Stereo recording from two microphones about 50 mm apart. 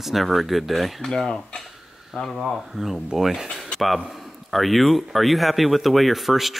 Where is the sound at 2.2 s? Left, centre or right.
Centre.